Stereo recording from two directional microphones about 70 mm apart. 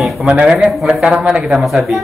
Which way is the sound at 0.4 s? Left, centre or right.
Centre.